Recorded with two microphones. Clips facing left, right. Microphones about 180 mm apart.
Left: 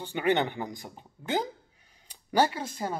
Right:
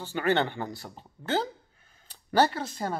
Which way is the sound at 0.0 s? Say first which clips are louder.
Even; 15° left (ahead or behind).